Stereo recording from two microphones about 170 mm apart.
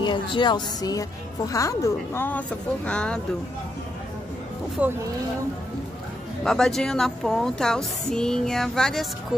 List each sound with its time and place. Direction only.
0.0 s a woman's voice: 25° left (ahead or behind); by 3.2 s 5° left (ahead or behind)
4.8 s speech: 10° right (ahead or behind)
6.4 s speech: centre (ahead or behind)